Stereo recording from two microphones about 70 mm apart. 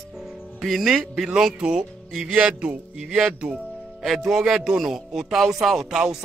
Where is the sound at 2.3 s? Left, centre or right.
Centre.